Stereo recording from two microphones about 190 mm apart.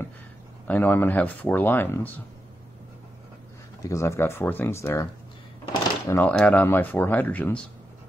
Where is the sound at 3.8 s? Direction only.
15° left (ahead or behind).